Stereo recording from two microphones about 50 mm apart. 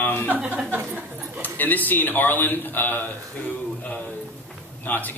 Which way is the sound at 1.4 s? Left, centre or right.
Left.